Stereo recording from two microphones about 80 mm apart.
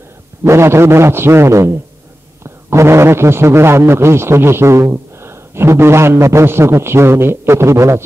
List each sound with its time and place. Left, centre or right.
0.4 s a man's voice: right